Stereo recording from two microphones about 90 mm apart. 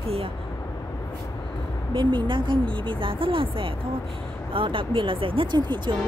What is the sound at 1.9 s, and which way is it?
Speech, 60° right (ahead or behind).